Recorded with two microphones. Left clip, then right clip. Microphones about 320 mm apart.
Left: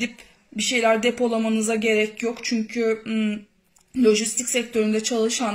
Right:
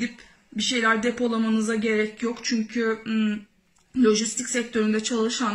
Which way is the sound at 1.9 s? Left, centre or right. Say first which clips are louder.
Left 4 dB; left.